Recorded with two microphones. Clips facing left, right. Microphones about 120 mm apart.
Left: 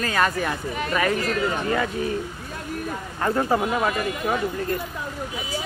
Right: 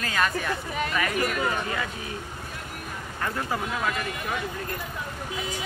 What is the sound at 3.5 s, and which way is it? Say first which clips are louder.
Speech: left 7 dB; 50° left (ahead or behind).